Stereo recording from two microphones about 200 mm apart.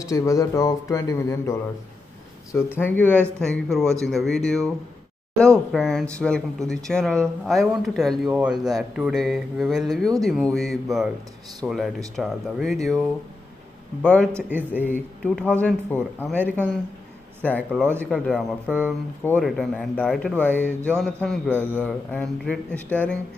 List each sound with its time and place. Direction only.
0.0 s a man's voice: 15° left (ahead or behind)
2.8 s a man's voice: 10° left (ahead or behind)
14.3 s a man's voice: 10° right (ahead or behind)
14.9 s a man's voice: 5° left (ahead or behind)